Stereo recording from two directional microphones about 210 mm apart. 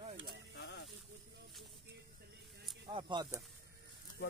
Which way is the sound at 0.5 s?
50° left (ahead or behind).